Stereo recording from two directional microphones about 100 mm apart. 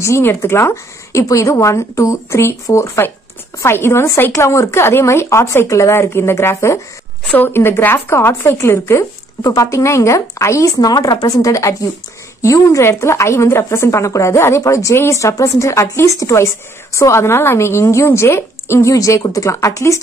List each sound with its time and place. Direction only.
0.0 s a woman's voice: 25° left (ahead or behind)